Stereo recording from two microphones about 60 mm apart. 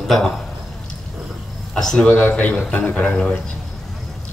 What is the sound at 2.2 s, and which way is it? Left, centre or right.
A man's voice, left.